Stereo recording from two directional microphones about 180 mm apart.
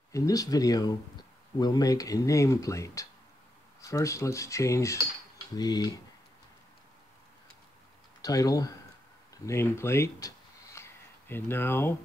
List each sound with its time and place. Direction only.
0.1 s speech: 20° left (ahead or behind)
8.2 s speech: 20° left (ahead or behind)
9.3 s a sound: 15° left (ahead or behind)